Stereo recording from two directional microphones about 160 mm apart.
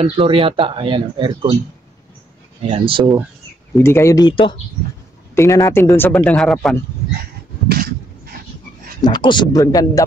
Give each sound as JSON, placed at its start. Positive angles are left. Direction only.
{"t": 0.0, "sound": "speech", "side_deg": -35}
{"t": 2.6, "sound": "speech", "side_deg": -35}
{"t": 3.7, "sound": "speech", "side_deg": 15}
{"t": 5.3, "sound": "a man's voice", "side_deg": 20}
{"t": 7.6, "sound": "a sound", "side_deg": -70}
{"t": 9.0, "sound": "speech", "side_deg": 30}